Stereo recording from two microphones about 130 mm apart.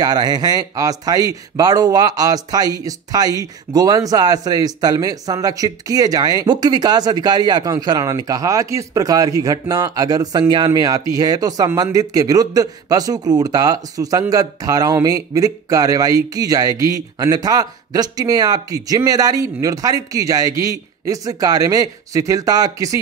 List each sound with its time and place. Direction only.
0.0 s speech: 30° right (ahead or behind)